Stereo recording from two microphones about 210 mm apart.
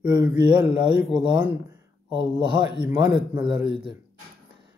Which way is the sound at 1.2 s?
20° right (ahead or behind).